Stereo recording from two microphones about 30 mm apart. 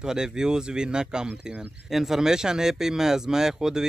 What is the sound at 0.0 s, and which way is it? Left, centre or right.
Speech, right.